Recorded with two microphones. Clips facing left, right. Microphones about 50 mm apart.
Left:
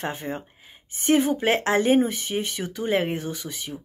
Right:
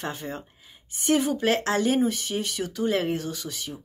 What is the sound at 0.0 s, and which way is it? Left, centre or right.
Speech, left.